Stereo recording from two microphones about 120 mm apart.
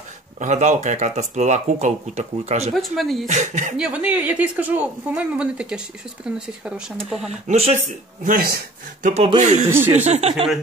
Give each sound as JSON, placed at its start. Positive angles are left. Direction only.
{"t": 0.4, "sound": "speech", "side_deg": -85}
{"t": 2.7, "sound": "speech", "side_deg": 0}
{"t": 3.3, "sound": "speech", "side_deg": -90}
{"t": 3.7, "sound": "speech", "side_deg": -10}
{"t": 7.4, "sound": "speech", "side_deg": -70}
{"t": 9.4, "sound": "speech", "side_deg": -85}
{"t": 9.7, "sound": "speech", "side_deg": -20}
{"t": 10.0, "sound": "speech", "side_deg": -60}